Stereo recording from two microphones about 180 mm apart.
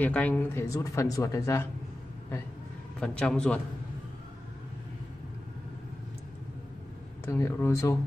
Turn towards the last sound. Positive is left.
turn(degrees=15)  # may be behind; listen again after turning